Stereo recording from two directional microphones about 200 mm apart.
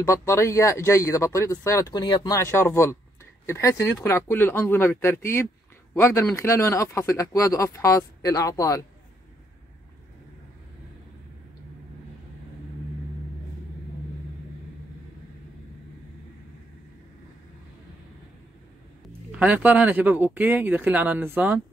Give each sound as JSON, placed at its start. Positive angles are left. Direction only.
{"t": 0.0, "sound": "speech", "side_deg": 15}
{"t": 19.3, "sound": "speech", "side_deg": -10}